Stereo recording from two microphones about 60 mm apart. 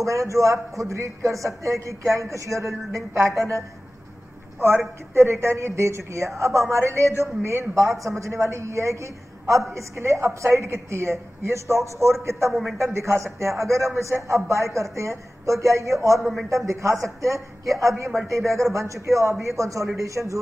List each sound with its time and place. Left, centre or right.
0.0 s a man's voice: right
16.2 s a man's voice: centre
16.4 s a man's voice: right